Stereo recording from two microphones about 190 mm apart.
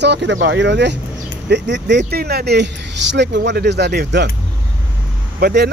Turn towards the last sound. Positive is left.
turn(degrees=-55)  # may be behind; listen again after turning